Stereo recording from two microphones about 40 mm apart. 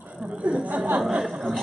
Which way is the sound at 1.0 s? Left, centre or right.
Centre.